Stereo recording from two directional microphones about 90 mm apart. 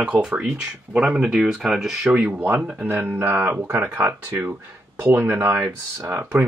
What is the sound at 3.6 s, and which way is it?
Speech, 25° right (ahead or behind).